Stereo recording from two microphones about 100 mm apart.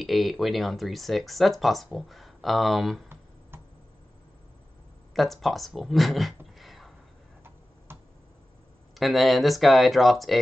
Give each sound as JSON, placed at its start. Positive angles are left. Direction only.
{"t": 0.0, "sound": "speech", "side_deg": 0}
{"t": 5.1, "sound": "speech", "side_deg": 0}
{"t": 7.9, "sound": "tick-tock", "side_deg": -25}
{"t": 8.9, "sound": "speech", "side_deg": 0}